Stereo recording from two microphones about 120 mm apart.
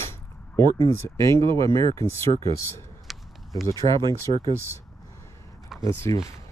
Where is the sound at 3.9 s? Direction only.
40° right (ahead or behind).